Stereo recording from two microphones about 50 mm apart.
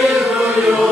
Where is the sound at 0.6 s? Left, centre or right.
Centre.